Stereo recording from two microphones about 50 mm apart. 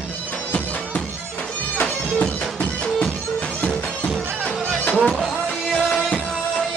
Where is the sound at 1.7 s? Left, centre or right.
Left.